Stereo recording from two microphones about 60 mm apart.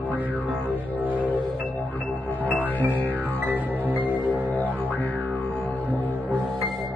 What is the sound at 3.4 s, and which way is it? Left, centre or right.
Music, right.